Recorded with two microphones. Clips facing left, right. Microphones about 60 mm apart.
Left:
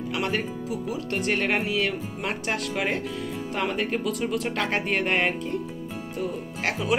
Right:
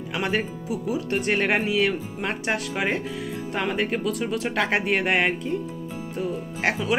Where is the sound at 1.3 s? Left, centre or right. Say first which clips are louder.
Right 3 dB; right.